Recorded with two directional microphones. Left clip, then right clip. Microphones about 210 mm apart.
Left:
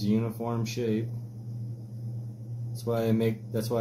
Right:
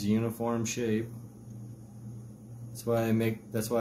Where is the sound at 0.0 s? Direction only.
15° right (ahead or behind).